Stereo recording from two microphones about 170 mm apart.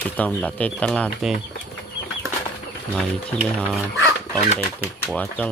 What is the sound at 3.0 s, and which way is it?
Speech, 5° left (ahead or behind).